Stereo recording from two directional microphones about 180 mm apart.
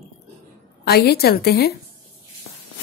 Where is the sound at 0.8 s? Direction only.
60° left (ahead or behind).